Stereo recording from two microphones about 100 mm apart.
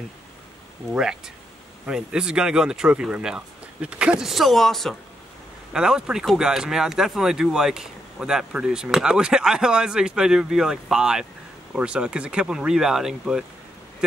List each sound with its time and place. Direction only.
0.9 s speech: 5° right (ahead or behind)